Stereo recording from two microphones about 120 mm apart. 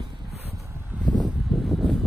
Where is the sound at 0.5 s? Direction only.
25° right (ahead or behind).